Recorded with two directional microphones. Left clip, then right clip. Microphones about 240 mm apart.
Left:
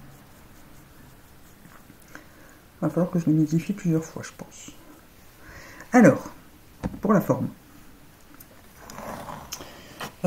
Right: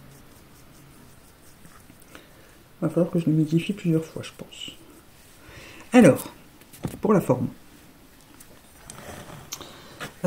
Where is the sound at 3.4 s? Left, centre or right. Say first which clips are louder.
Right 3 dB; right.